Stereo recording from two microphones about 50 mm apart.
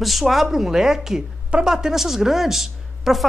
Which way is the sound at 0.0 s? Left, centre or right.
Centre.